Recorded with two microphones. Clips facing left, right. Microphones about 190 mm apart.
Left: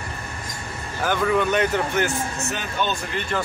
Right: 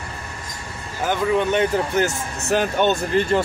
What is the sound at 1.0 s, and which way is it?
Speech, 20° right (ahead or behind).